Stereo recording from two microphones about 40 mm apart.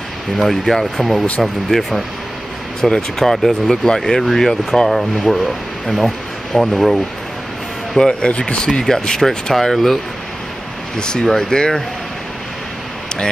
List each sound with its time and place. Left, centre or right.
0.4 s speech: centre
2.8 s speech: centre
3.2 s speech: centre
8.0 s speech: left
8.6 s speech: centre
11.0 s speech: centre